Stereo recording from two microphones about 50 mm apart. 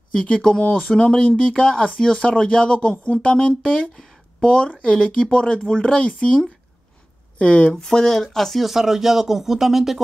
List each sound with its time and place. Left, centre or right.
0.1 s speech: centre
7.7 s speech: centre